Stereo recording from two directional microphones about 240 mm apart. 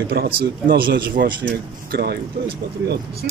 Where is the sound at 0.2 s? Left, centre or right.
Right.